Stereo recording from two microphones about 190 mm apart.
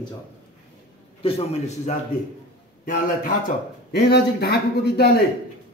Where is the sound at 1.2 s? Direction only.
35° left (ahead or behind).